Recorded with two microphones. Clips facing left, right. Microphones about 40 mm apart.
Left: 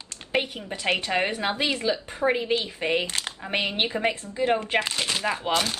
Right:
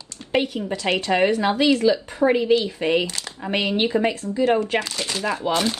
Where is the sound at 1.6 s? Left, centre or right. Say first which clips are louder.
Right 11 dB; left.